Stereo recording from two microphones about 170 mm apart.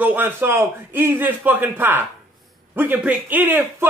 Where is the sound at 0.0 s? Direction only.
10° right (ahead or behind).